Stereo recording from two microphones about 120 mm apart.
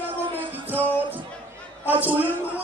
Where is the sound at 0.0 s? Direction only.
15° right (ahead or behind).